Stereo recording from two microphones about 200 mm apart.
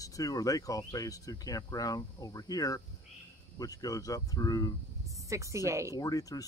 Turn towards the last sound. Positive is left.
turn(degrees=15)  # may be behind; listen again after turning